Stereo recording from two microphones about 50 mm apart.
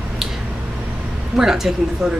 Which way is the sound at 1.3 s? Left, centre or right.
Centre.